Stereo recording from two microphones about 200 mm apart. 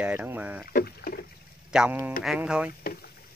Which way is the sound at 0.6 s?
50° left (ahead or behind).